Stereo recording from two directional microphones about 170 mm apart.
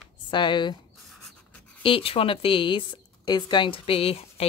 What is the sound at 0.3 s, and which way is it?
Speech, 30° left (ahead or behind).